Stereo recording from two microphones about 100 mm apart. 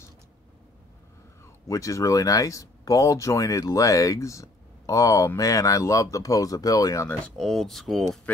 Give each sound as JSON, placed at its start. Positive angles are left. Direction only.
{"t": 1.4, "sound": "speech", "side_deg": 30}
{"t": 7.3, "sound": "speech", "side_deg": 5}